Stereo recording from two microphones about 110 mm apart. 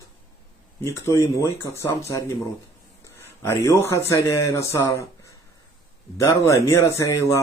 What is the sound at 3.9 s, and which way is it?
Speech, 25° left (ahead or behind).